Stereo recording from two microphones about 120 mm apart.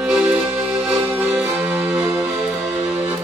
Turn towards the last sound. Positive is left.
turn(degrees=-10)  # may be behind; listen again after turning